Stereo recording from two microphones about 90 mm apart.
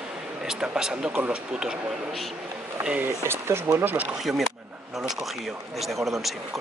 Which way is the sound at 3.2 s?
25° right (ahead or behind).